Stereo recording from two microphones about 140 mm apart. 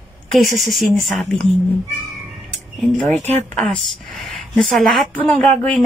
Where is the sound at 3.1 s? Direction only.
55° right (ahead or behind).